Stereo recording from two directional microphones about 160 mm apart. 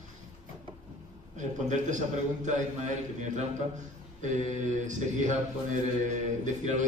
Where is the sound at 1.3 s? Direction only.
50° right (ahead or behind).